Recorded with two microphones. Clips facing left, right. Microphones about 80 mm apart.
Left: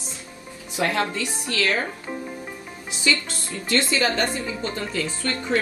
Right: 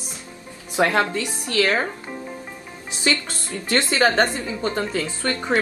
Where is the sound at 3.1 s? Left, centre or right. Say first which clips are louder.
Right 1 dB; right.